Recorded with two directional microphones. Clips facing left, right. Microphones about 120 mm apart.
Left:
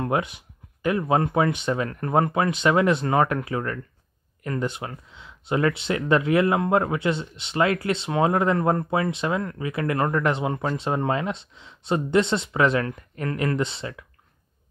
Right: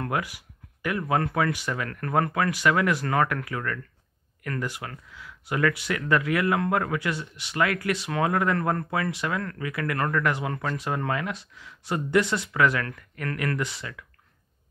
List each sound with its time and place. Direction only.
0.0 s speech: 25° left (ahead or behind)